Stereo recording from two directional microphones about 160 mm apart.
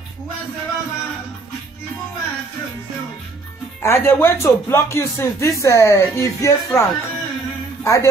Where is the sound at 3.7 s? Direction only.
15° left (ahead or behind).